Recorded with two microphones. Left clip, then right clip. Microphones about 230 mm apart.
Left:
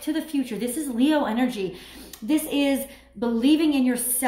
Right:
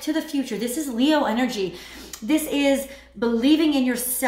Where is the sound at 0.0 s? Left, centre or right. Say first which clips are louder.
Right 2 dB; centre.